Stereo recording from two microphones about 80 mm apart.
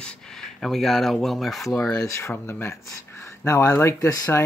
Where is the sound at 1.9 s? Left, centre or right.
Left.